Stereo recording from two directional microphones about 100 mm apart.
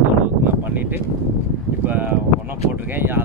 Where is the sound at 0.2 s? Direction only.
15° right (ahead or behind).